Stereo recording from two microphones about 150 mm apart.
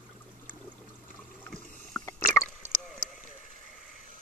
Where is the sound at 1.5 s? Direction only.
5° left (ahead or behind).